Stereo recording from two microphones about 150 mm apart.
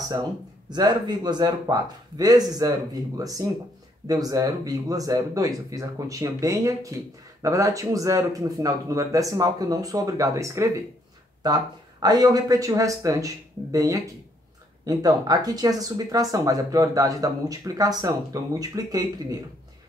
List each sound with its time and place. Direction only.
0.1 s speech: 25° right (ahead or behind)